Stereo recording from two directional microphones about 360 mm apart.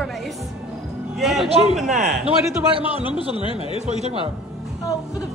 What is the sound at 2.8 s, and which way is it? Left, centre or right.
Speech, centre.